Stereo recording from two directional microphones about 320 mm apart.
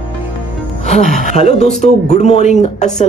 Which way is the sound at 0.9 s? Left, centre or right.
Left.